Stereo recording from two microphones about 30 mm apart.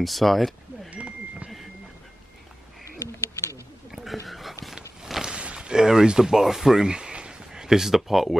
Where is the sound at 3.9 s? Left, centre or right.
Centre.